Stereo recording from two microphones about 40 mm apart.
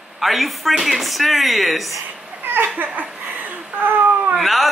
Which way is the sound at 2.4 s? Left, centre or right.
Right.